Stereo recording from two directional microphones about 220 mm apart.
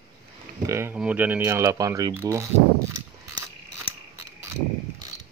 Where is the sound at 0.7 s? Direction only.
10° right (ahead or behind).